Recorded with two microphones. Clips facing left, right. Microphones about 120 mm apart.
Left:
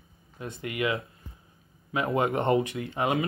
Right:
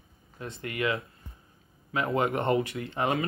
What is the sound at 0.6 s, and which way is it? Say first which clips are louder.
Speech: left 1 dB; 20° left (ahead or behind).